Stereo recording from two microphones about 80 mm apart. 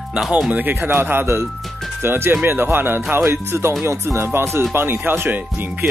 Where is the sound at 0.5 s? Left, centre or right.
Right.